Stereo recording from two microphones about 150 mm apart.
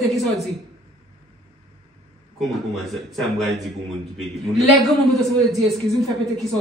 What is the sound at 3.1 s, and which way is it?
A man's voice, centre (ahead or behind).